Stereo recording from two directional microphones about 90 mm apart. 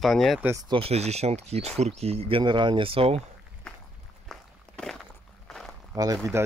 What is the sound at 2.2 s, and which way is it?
Speech, 70° right (ahead or behind).